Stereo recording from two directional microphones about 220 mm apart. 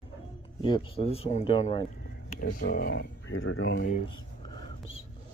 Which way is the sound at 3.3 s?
65° left (ahead or behind).